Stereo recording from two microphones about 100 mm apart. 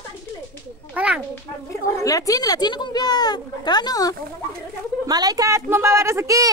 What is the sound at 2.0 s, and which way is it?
A woman's voice, 35° left (ahead or behind).